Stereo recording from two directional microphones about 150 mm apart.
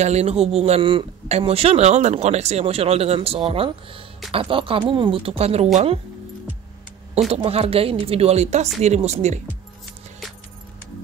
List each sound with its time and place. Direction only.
0.0 s a man's voice: 45° right (ahead or behind)
7.2 s a man's voice: 40° right (ahead or behind)